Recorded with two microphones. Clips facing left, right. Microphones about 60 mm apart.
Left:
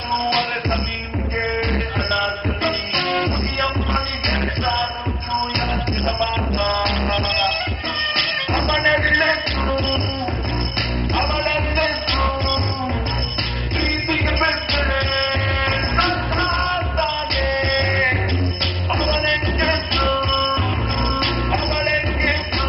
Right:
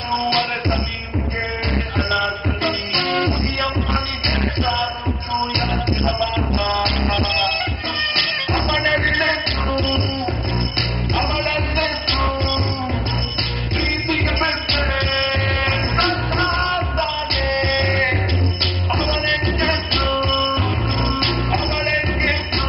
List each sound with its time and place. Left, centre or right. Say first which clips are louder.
0.3 s music: even; centre
2.6 s music: even; left
5.6 s music: right 2 dB; left
13.7 s music: even; left
16.1 s music: right 1 dB; left
16.6 s music: right 1 dB; centre
18.9 s music: left 1 dB; left